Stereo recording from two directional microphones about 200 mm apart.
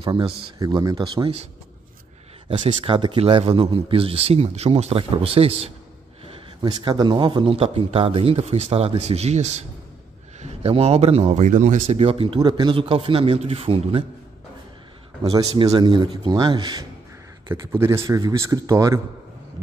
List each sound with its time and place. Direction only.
0.0 s speech: 25° right (ahead or behind)
2.6 s speech: 25° right (ahead or behind)
15.3 s speech: 20° right (ahead or behind)